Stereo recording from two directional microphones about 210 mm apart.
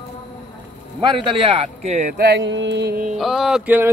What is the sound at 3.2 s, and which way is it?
Speech, centre (ahead or behind).